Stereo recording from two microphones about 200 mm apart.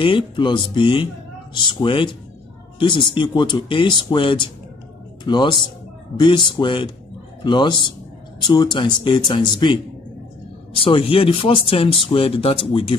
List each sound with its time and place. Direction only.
0.0 s speech: 25° left (ahead or behind)